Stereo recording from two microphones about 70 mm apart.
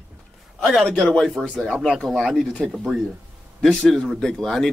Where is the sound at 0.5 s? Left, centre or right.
Centre.